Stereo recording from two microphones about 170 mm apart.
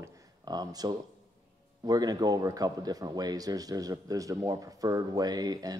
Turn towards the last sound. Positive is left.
turn(degrees=-20)  # may be behind; listen again after turning